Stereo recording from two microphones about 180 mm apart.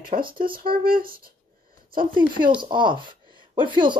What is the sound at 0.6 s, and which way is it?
Speech, 55° right (ahead or behind).